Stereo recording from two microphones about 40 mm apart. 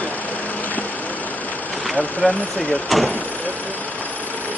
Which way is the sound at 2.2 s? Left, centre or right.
Left.